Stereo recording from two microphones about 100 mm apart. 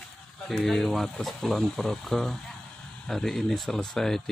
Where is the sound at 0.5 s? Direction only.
Centre (ahead or behind).